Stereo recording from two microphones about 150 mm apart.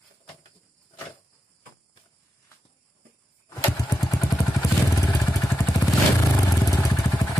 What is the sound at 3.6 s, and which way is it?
Vehicle, 20° left (ahead or behind).